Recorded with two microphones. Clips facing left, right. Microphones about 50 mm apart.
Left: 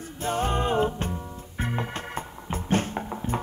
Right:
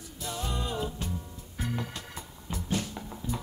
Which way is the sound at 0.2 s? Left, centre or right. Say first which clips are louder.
Left 9 dB; left.